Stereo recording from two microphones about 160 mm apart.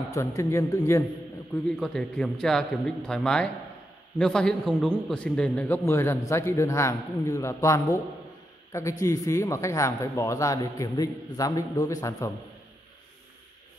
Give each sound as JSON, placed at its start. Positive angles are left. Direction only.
{"t": 0.1, "sound": "a man's voice", "side_deg": 20}
{"t": 1.5, "sound": "a man's voice", "side_deg": 5}
{"t": 5.9, "sound": "a man's voice", "side_deg": 15}
{"t": 9.0, "sound": "speech", "side_deg": 20}